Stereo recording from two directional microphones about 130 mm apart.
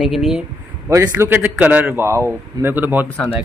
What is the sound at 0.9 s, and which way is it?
A man's voice, 20° right (ahead or behind).